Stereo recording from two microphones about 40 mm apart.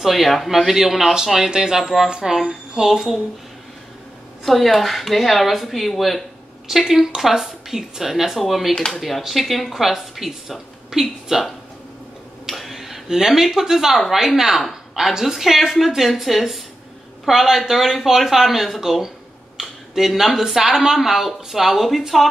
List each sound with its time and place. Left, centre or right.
0.0 s a woman's voice: centre
4.5 s a woman's voice: centre
8.7 s speech: centre
9.2 s a woman's voice: centre
12.4 s dishes: centre
13.9 s a woman's voice: centre
14.2 s a woman's voice: centre